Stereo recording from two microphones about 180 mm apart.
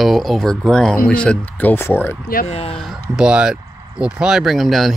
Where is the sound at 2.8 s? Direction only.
Centre (ahead or behind).